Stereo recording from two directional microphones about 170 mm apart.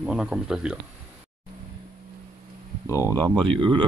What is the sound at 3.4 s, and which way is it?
Speech, 30° right (ahead or behind).